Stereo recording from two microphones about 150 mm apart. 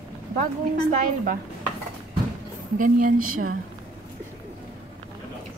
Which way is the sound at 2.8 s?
65° right (ahead or behind).